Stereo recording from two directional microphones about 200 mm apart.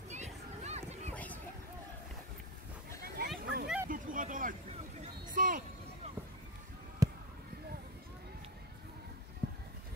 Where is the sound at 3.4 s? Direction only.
55° right (ahead or behind).